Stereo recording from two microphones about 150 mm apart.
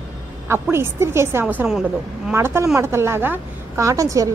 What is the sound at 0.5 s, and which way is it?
A woman's voice, 15° right (ahead or behind).